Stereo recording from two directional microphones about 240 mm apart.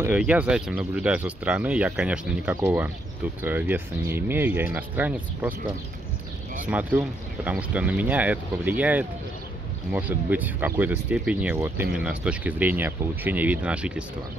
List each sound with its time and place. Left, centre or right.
0.0 s speech: centre
6.6 s speech: centre